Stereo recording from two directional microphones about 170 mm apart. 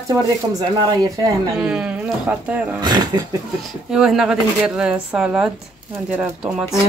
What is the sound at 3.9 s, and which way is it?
Speech, 5° right (ahead or behind).